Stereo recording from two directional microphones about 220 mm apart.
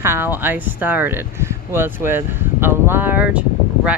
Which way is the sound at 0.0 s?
10° right (ahead or behind).